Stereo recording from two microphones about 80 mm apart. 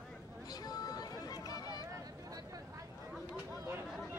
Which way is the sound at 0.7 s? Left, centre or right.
Left.